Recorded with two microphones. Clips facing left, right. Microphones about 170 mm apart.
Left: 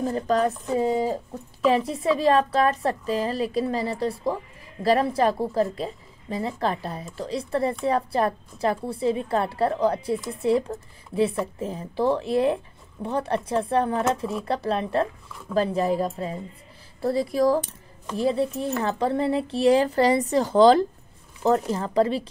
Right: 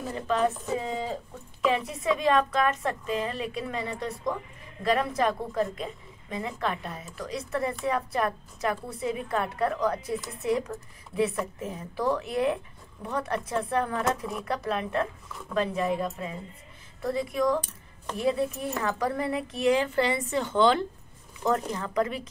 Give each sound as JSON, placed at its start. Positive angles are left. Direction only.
{"t": 0.0, "sound": "a woman's voice", "side_deg": 40}